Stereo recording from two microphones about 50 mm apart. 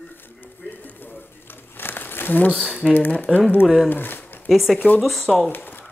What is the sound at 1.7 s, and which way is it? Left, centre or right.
Crumpling, left.